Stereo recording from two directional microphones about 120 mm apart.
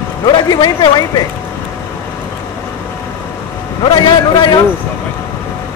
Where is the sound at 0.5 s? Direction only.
35° left (ahead or behind).